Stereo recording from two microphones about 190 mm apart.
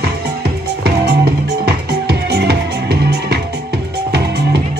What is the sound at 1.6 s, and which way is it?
Music, 60° right (ahead or behind).